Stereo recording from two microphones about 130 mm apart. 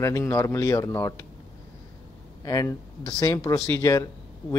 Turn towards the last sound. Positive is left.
turn(degrees=25)  # may be behind; listen again after turning